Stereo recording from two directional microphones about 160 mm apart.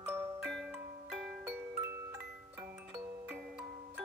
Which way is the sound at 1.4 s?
15° right (ahead or behind).